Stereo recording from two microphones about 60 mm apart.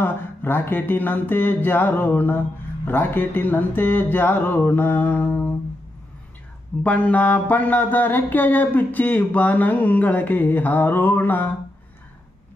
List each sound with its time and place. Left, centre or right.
0.0 s mantra: left
6.8 s mantra: left